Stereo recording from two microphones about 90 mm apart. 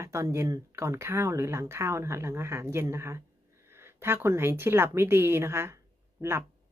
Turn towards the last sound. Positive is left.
turn(degrees=-30)  # may be behind; listen again after turning